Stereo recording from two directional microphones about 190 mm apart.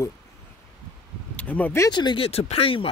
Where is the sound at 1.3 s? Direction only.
10° left (ahead or behind); by 2.9 s 30° left (ahead or behind).